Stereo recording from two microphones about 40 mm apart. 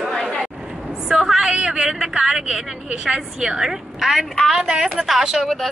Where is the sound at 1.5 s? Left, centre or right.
Right.